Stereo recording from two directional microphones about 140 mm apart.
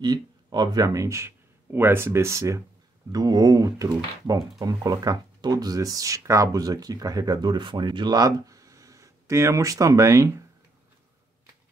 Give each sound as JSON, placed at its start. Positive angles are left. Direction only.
{"t": 0.0, "sound": "speech", "side_deg": -30}